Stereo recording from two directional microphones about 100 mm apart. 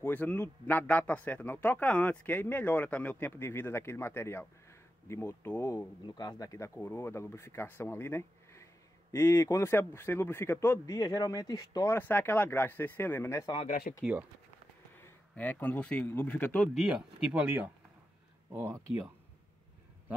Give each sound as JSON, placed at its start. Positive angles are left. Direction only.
{"t": 0.0, "sound": "a man's voice", "side_deg": 20}
{"t": 6.0, "sound": "a man's voice", "side_deg": 40}
{"t": 10.9, "sound": "speech", "side_deg": 35}
{"t": 11.9, "sound": "a man's voice", "side_deg": 20}
{"t": 15.3, "sound": "speech", "side_deg": 15}
{"t": 16.7, "sound": "speech", "side_deg": -10}
{"t": 18.5, "sound": "speech", "side_deg": -25}